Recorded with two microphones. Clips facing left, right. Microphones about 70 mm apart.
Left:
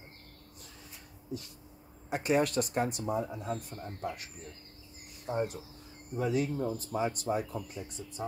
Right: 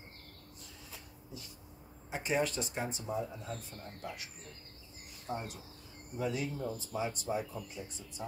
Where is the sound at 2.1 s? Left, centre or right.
Left.